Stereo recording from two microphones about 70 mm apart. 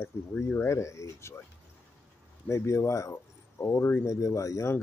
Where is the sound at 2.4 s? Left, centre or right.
Left.